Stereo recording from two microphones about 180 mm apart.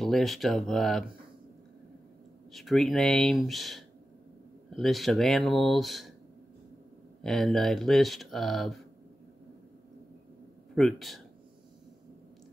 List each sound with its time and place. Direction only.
0.0 s speech: centre (ahead or behind)
2.5 s speech: centre (ahead or behind)
7.2 s speech: centre (ahead or behind)
10.7 s speech: centre (ahead or behind)